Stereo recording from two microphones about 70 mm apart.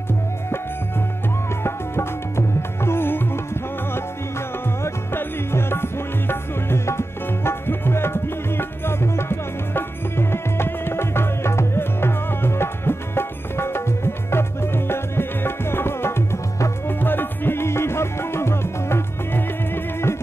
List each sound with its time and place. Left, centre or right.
1.6 s music: left
4.8 s music: left
16.8 s music: left